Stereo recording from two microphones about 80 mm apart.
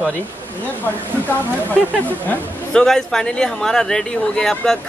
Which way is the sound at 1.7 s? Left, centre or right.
Left.